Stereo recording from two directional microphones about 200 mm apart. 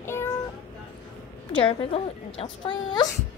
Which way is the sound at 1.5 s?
25° left (ahead or behind).